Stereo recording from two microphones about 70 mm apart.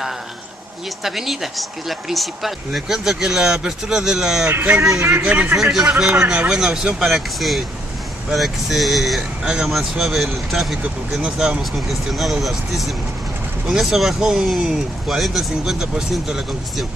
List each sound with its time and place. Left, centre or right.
1.0 s speech: centre; by 5.6 s right
5.6 s speech: centre
9.4 s speech: centre